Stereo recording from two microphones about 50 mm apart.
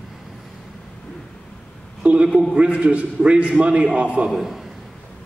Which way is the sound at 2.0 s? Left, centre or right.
Right.